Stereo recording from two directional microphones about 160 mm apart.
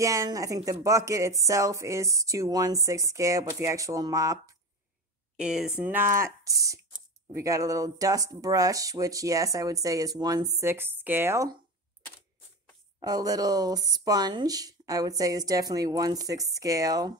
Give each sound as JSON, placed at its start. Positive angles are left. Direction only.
{"t": 0.0, "sound": "speech", "side_deg": -20}
{"t": 5.4, "sound": "speech", "side_deg": -5}
{"t": 13.0, "sound": "speech", "side_deg": -25}